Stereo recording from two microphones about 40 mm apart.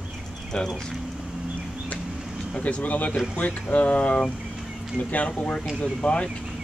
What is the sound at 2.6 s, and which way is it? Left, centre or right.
Speech, left.